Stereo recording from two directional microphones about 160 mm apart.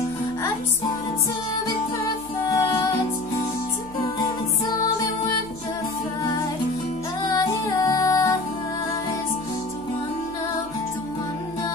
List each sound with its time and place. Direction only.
2.5 s music: 20° left (ahead or behind)
7.2 s music: 20° left (ahead or behind)